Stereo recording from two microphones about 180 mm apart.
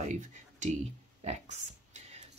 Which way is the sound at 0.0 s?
40° right (ahead or behind).